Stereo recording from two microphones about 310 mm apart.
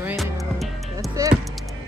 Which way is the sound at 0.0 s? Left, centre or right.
Centre.